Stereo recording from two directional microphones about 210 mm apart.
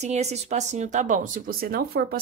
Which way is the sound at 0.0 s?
30° right (ahead or behind).